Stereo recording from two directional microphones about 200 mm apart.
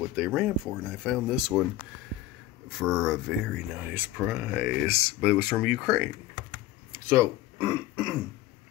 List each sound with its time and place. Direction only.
0.0 s speech: 5° right (ahead or behind)
2.7 s speech: centre (ahead or behind)
7.1 s speech: 15° right (ahead or behind)